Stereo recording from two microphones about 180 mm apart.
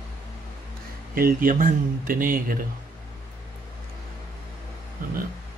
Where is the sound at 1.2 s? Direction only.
50° right (ahead or behind).